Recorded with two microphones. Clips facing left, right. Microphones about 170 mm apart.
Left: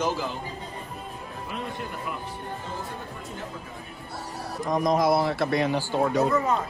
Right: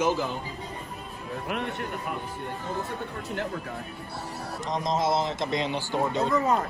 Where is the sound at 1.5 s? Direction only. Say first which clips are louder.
Right 3 dB; 70° right (ahead or behind).